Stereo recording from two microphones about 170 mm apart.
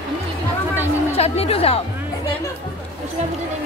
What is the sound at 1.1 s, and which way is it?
Speech, 35° left (ahead or behind).